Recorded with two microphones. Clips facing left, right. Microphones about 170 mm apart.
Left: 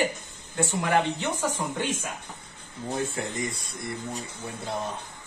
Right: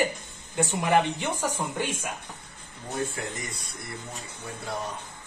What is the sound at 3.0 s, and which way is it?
Speech, 25° left (ahead or behind).